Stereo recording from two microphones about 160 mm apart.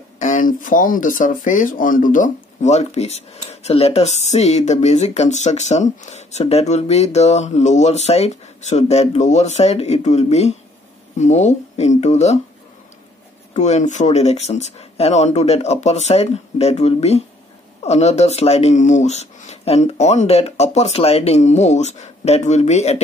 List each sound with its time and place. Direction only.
0.2 s speech: 55° left (ahead or behind)
13.5 s speech: 45° left (ahead or behind)